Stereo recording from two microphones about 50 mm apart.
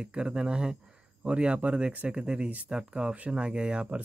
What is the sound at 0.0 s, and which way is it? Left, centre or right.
Speech, centre.